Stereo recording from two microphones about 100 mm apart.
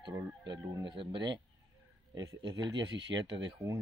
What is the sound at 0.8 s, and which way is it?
Speech, 55° right (ahead or behind).